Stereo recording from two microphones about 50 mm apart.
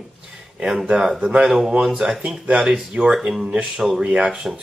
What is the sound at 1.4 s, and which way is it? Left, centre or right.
Speech, centre.